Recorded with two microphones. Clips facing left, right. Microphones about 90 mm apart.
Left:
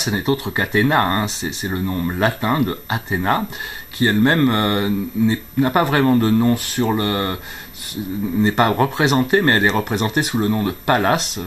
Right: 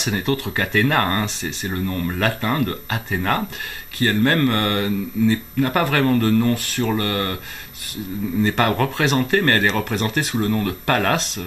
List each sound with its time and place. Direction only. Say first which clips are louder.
0.0 s speech: left 2 dB; 15° left (ahead or behind)
8.4 s speech: left 3 dB; 20° left (ahead or behind)